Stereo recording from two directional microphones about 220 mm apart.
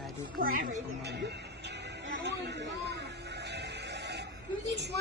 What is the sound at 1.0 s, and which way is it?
Music, 50° right (ahead or behind).